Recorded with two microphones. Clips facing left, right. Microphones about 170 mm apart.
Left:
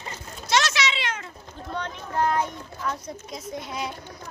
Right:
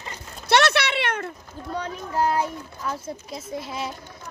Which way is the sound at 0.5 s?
60° right (ahead or behind).